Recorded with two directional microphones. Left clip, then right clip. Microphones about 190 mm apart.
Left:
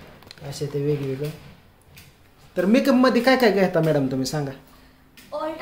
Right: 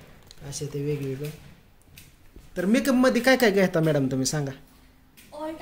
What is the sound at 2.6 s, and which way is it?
Speech, 15° right (ahead or behind).